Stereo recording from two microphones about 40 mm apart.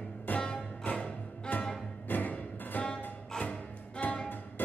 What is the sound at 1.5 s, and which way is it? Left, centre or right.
Music, left.